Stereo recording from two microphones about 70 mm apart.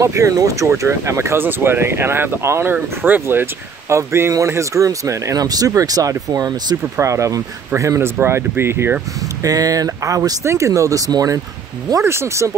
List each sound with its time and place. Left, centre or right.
0.0 s speech: right
0.7 s speech: right
3.9 s speech: right
6.8 s speech: right
9.4 s speech: right
12.0 s speech: right